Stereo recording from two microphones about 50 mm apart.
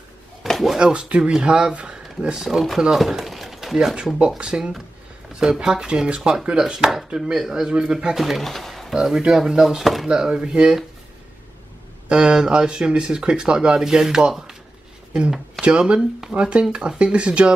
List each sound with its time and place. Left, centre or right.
0.5 s a sound: centre
0.7 s speech: centre
3.0 s pigeon: centre
3.9 s speech: centre
8.2 s speech: centre
9.3 s speech: centre
10.0 s speech: centre
12.1 s speech: centre
15.6 s speech: right
16.0 s speech: centre
16.3 s speech: right